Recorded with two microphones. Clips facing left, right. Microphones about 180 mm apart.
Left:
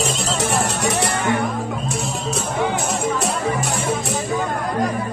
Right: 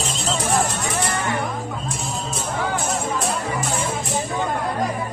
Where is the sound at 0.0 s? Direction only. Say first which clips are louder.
Left 3 dB; 75° left (ahead or behind).